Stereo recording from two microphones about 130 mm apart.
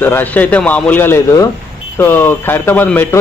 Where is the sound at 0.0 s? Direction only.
15° left (ahead or behind).